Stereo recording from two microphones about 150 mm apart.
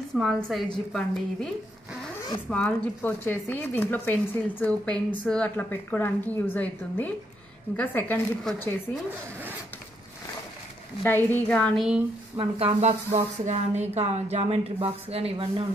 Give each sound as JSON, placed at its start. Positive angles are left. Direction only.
{"t": 0.1, "sound": "a woman's voice", "side_deg": 5}
{"t": 2.5, "sound": "speech", "side_deg": 10}
{"t": 11.1, "sound": "speech", "side_deg": 15}
{"t": 12.4, "sound": "a woman's voice", "side_deg": -40}